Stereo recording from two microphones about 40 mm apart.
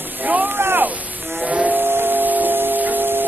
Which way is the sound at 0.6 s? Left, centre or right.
Right.